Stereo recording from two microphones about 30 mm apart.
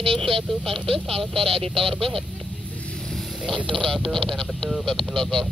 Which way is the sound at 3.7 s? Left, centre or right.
Centre.